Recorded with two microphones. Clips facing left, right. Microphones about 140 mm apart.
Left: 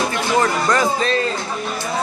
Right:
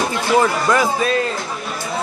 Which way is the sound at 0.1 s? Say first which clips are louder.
Right 2 dB; 10° right (ahead or behind).